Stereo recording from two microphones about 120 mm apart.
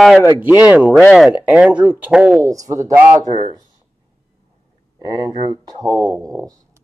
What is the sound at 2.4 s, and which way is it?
Speech, 30° right (ahead or behind).